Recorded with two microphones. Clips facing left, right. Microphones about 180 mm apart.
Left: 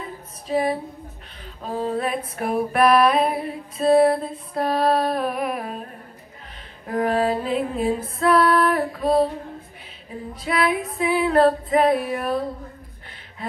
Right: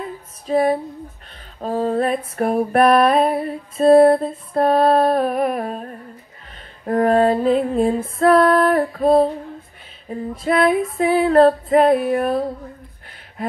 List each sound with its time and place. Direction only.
0.5 s female singing: 45° right (ahead or behind)
6.9 s female singing: 45° right (ahead or behind)